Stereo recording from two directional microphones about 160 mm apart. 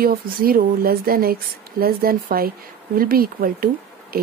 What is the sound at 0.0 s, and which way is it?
Speech, 65° right (ahead or behind).